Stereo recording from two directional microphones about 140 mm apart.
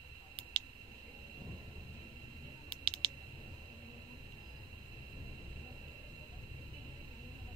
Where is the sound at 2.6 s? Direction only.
40° right (ahead or behind).